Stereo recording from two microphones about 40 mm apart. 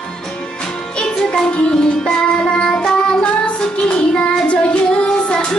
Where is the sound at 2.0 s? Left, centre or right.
Left.